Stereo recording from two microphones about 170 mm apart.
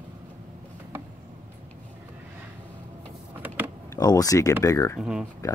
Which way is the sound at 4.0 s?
20° left (ahead or behind).